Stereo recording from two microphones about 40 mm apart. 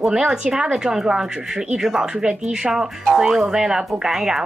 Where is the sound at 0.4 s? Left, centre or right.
Right.